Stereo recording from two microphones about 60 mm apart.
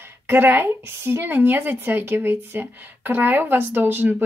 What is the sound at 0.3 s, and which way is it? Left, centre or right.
Speech, right.